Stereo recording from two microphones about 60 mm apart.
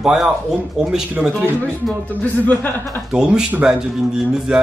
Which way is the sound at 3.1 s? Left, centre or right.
Centre.